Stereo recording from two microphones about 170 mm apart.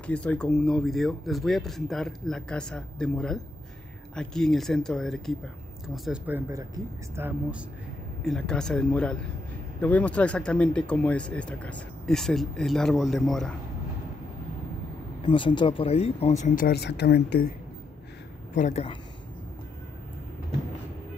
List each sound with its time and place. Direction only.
0.0 s speech: 5° left (ahead or behind)
6.0 s speech: 10° right (ahead or behind)
8.2 s speech: 5° left (ahead or behind)
15.2 s speech: 30° left (ahead or behind); by 16.6 s 45° left (ahead or behind)
16.6 s speech: 75° left (ahead or behind)
18.5 s speech: 45° left (ahead or behind)